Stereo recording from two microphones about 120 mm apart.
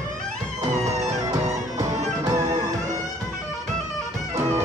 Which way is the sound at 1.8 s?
30° right (ahead or behind).